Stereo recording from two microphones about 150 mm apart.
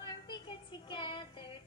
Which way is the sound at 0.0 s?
30° left (ahead or behind).